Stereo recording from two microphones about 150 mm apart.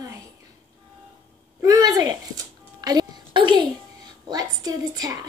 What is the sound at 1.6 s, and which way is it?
Music, 25° right (ahead or behind).